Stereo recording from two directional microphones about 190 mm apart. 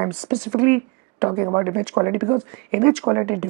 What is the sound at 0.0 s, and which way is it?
Speech, 15° right (ahead or behind).